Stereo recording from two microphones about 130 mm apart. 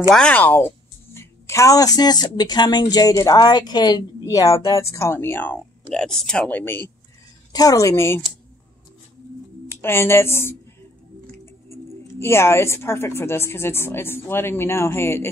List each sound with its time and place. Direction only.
0.1 s a woman's voice: 10° left (ahead or behind)
9.7 s a woman's voice: 20° left (ahead or behind)
11.7 s speech: 20° left (ahead or behind)